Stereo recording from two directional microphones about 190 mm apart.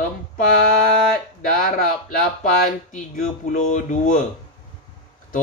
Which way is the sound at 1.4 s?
45° left (ahead or behind).